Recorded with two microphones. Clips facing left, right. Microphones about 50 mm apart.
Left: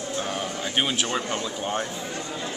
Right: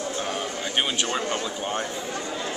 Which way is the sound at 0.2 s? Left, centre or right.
Centre.